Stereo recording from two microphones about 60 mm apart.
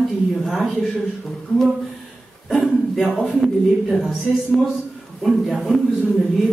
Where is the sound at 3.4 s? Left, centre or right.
Centre.